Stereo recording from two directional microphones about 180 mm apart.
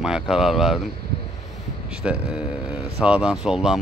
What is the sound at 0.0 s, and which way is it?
Speech, 5° right (ahead or behind).